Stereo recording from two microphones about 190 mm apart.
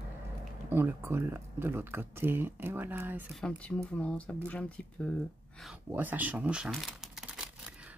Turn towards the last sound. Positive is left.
turn(degrees=-5)  # may be behind; listen again after turning